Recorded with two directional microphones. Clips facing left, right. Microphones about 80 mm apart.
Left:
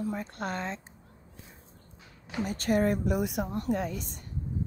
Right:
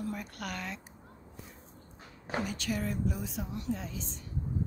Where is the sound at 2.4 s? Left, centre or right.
Left.